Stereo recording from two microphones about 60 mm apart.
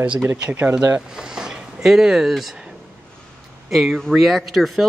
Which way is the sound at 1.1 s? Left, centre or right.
Centre.